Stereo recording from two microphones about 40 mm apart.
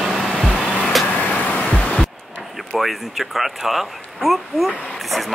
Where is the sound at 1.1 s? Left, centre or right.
Left.